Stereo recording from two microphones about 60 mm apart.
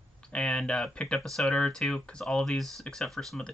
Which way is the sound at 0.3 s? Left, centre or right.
Centre.